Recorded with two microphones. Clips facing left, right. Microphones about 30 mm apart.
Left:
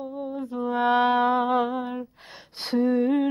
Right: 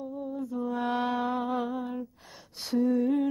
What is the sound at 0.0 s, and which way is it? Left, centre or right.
Mantra, left.